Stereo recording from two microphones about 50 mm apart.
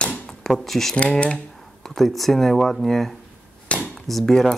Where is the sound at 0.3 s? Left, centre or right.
Centre.